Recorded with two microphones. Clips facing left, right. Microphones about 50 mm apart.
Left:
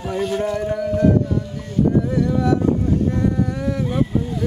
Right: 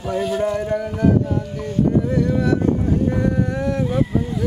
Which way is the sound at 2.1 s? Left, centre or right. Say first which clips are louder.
Even; centre.